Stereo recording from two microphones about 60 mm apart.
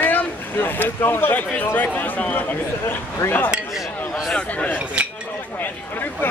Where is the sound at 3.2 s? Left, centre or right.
Left.